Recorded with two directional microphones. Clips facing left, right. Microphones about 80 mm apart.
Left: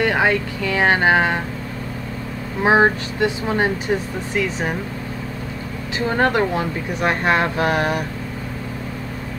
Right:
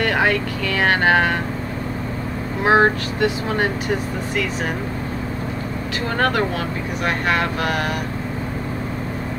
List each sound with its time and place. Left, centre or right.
0.0 s speech: centre
2.6 s speech: centre
5.9 s speech: centre